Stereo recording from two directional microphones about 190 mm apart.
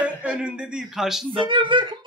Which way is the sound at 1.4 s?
25° right (ahead or behind).